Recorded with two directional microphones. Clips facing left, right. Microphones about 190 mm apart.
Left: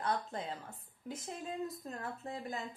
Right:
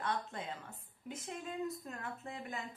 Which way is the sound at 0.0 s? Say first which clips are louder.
Left 2 dB; 35° left (ahead or behind).